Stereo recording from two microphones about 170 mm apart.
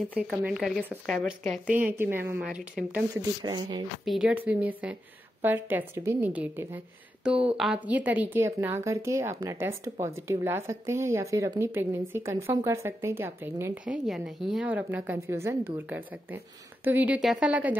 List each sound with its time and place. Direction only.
0.1 s speech: 5° right (ahead or behind)
1.9 s a woman's voice: 10° right (ahead or behind)
3.4 s speech: 25° right (ahead or behind)
4.0 s a woman's voice: 5° right (ahead or behind)